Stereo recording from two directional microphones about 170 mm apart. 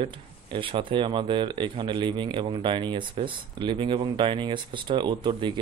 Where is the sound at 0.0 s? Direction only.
30° right (ahead or behind).